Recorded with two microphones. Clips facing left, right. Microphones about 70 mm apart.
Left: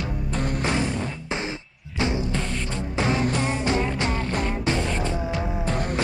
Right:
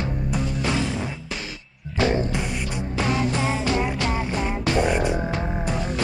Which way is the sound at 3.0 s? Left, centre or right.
Left.